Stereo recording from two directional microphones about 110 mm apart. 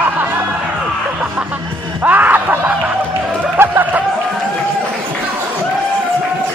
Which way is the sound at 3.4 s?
15° right (ahead or behind).